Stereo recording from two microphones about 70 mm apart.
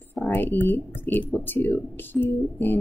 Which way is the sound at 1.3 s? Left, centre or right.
Left.